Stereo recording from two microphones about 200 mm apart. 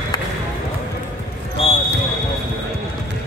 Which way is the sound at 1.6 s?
30° left (ahead or behind).